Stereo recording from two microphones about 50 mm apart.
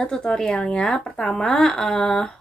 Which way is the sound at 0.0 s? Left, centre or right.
Centre.